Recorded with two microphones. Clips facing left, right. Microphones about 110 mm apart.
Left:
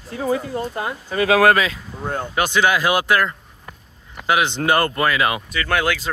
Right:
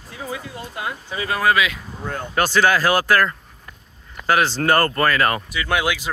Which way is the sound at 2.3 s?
15° left (ahead or behind).